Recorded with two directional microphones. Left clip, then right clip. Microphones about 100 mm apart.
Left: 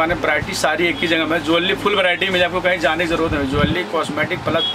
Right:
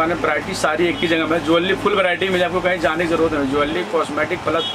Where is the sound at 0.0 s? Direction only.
5° left (ahead or behind).